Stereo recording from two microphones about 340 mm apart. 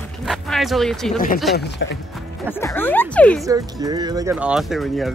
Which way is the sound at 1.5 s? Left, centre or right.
Left.